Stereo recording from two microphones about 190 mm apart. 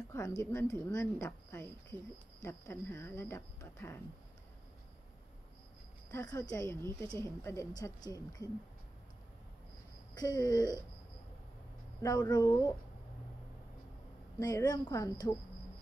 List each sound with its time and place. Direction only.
0.4 s a woman's voice: 15° left (ahead or behind)
6.1 s a woman's voice: 15° left (ahead or behind)
10.1 s a woman's voice: 20° left (ahead or behind)
12.0 s a woman's voice: 20° left (ahead or behind)
14.4 s a woman's voice: 20° left (ahead or behind)